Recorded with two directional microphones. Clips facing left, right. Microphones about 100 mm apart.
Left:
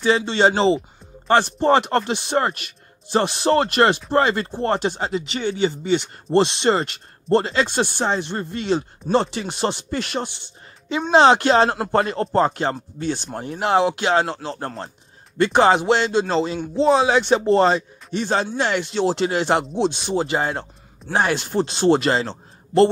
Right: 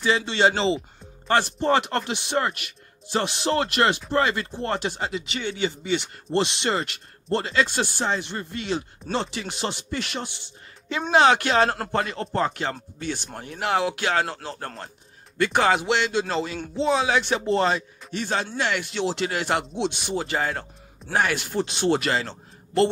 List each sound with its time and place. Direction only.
0.0 s speech: 30° left (ahead or behind)
10.9 s a man's voice: 25° left (ahead or behind)